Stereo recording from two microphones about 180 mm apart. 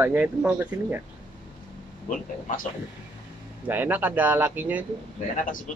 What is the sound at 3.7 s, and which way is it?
Speech, 10° right (ahead or behind).